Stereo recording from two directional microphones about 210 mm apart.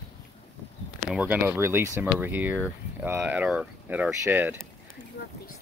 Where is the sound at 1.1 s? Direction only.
5° right (ahead or behind).